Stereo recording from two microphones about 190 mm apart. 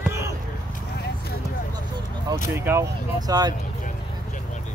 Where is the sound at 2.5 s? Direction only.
15° right (ahead or behind).